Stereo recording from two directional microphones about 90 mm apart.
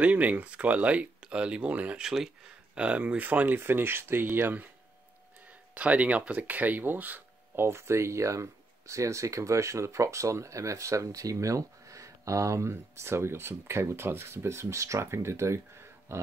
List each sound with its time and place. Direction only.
0.0 s speech: 15° right (ahead or behind)
5.8 s speech: 15° right (ahead or behind); by 16.2 s 30° right (ahead or behind)